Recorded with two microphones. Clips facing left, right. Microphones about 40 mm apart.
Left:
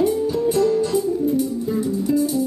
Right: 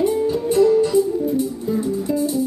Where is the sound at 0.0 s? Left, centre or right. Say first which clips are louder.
Even; right.